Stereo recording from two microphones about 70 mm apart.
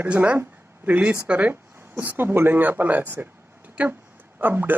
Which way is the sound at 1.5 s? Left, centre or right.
Right.